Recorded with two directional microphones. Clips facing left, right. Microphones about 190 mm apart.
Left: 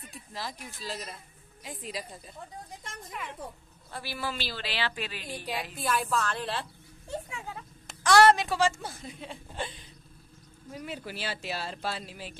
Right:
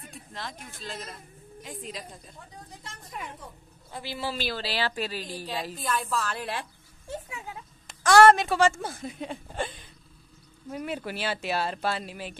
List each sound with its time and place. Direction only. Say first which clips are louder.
0.1 s a sound: left 1 dB; 5° left (ahead or behind)
0.8 s a woman's voice: even; centre (ahead or behind)
3.9 s a man's voice: right 2 dB; 20° right (ahead or behind)
4.6 s a woman's voice: right 4 dB; 40° right (ahead or behind)
5.8 s a woman's voice: left 2 dB; 5° left (ahead or behind)
8.0 s a woman's voice: right 3 dB; 50° right (ahead or behind)
10.7 s speech: right 5 dB; 60° right (ahead or behind)